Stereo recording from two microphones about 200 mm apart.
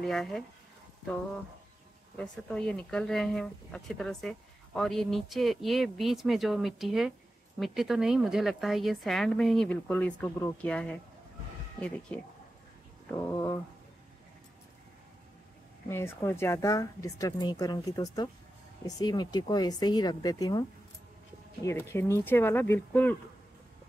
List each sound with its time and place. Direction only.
0.0 s speech: centre (ahead or behind)
2.1 s speech: 5° left (ahead or behind)
13.1 s speech: 10° left (ahead or behind)
15.9 s speech: 10° left (ahead or behind)
21.6 s speech: 15° left (ahead or behind)